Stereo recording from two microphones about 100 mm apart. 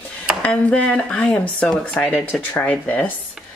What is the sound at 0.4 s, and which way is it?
Speech, 10° left (ahead or behind).